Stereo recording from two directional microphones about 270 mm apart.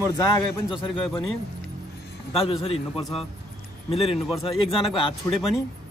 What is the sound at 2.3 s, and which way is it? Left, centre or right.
Speech, left.